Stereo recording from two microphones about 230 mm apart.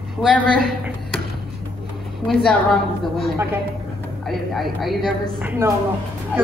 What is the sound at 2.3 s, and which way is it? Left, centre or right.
Speech, centre.